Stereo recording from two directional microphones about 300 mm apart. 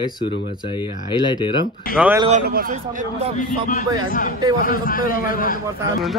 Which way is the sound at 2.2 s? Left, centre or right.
Right.